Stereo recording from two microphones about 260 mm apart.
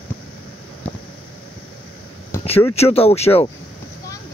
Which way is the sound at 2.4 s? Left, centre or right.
Left.